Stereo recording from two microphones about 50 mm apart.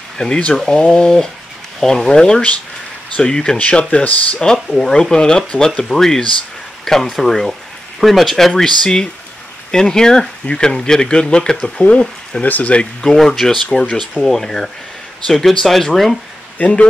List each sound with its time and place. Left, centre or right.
0.2 s speech: centre
3.5 s speech: left
4.4 s speech: centre
12.4 s speech: left
13.0 s speech: centre
16.5 s speech: left